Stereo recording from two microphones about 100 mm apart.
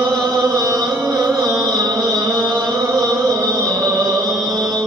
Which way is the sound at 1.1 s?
40° right (ahead or behind).